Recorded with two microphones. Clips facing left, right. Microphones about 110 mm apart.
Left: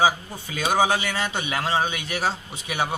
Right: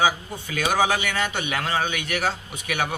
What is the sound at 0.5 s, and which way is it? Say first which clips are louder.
Speech: left 1 dB; 15° left (ahead or behind).